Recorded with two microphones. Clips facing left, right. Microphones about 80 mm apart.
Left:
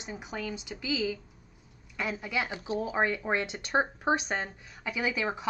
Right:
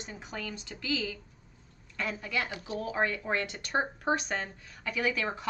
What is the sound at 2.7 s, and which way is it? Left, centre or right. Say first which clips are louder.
Speech: left 2 dB; centre.